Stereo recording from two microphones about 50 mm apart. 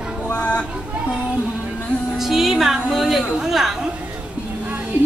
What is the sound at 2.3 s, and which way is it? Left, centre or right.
A woman's voice, centre.